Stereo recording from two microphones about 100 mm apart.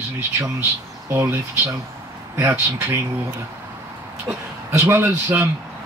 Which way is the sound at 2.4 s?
20° right (ahead or behind).